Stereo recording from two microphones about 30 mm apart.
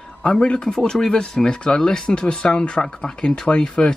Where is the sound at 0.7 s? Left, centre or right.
Centre.